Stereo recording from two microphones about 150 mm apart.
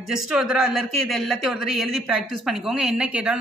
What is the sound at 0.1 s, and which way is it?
Speech, 5° right (ahead or behind).